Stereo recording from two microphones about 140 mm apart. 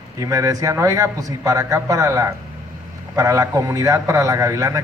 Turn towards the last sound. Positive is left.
turn(degrees=-25)  # may be behind; listen again after turning